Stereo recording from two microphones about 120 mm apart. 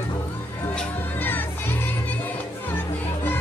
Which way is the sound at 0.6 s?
15° left (ahead or behind).